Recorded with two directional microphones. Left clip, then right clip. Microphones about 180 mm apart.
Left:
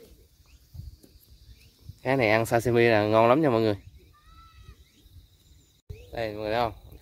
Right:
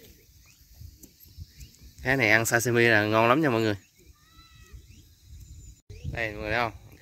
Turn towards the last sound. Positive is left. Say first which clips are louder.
# left 1 dB
turn(degrees=5)  # may be behind; listen again after turning